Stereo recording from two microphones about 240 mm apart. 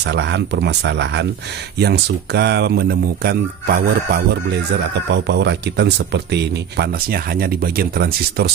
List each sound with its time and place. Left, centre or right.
0.0 s speech: right